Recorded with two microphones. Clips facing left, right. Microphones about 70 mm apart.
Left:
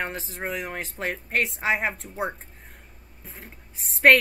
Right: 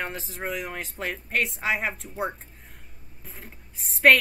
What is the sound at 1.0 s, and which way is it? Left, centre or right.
Speech, centre.